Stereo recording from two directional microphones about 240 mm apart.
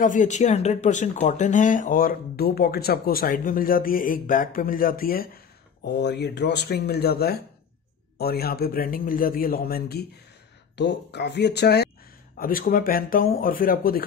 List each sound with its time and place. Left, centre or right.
0.0 s speech: left